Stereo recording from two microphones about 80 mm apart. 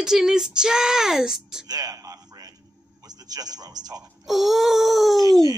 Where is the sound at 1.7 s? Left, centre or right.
Right.